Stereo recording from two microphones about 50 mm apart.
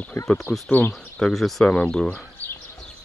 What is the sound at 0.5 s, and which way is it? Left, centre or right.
Speech, left.